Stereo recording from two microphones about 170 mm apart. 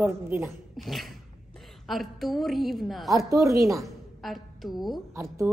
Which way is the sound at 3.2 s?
20° right (ahead or behind).